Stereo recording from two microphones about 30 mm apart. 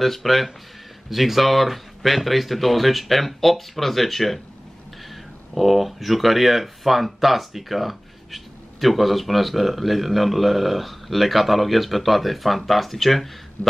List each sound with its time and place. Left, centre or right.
0.0 s a man's voice: centre
5.5 s a man's voice: centre
13.6 s a sound: left